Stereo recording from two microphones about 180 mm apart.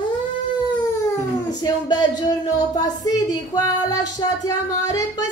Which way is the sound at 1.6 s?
20° left (ahead or behind).